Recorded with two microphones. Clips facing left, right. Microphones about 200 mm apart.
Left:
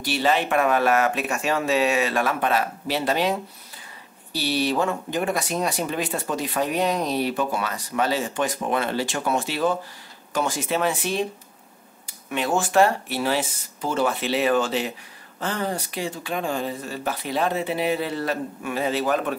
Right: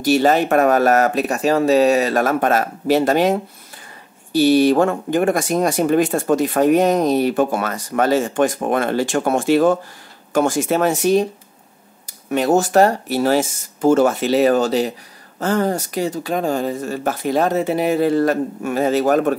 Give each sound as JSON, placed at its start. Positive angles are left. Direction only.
{"t": 0.0, "sound": "speech", "side_deg": -45}